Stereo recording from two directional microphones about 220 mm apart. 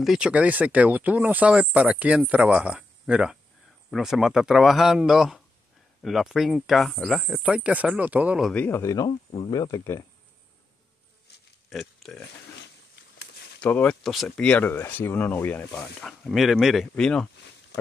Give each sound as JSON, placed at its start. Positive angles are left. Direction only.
{"t": 0.0, "sound": "speech", "side_deg": -5}
{"t": 11.7, "sound": "speech", "side_deg": 0}
{"t": 12.9, "sound": "a sound", "side_deg": 50}
{"t": 13.6, "sound": "speech", "side_deg": 5}